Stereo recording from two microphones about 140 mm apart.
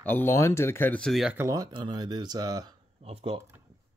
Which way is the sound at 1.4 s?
25° right (ahead or behind).